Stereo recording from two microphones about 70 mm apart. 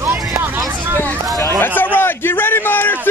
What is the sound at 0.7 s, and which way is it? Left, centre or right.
Speech, right.